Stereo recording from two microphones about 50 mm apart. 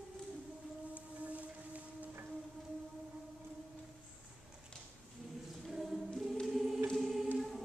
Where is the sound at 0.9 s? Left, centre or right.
Right.